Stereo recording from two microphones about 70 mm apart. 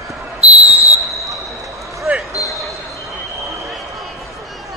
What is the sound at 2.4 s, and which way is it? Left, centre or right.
Basketball bounce, left.